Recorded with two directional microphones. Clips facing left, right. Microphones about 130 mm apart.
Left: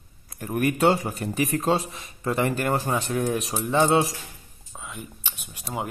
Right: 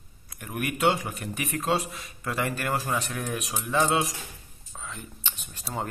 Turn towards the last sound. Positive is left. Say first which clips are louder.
# left 2 dB
turn(degrees=10)  # may be behind; listen again after turning